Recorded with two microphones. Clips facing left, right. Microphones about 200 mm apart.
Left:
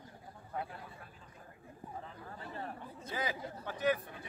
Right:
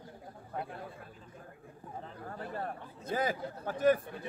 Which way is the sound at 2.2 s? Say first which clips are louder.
Right 7 dB; 50° right (ahead or behind).